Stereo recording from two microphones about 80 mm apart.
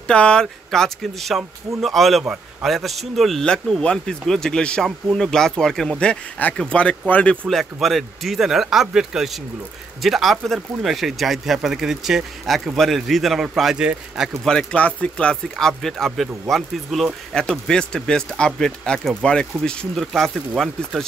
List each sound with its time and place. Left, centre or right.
0.0 s speech: centre
7.4 s speech: centre
14.4 s speech: centre
17.4 s speech: centre